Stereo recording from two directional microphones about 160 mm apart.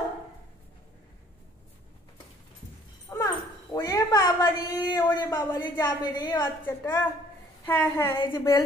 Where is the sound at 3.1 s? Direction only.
20° left (ahead or behind).